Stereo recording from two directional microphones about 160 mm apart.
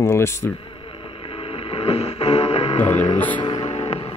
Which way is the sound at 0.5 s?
35° left (ahead or behind).